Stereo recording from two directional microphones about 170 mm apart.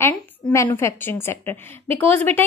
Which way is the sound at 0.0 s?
15° left (ahead or behind).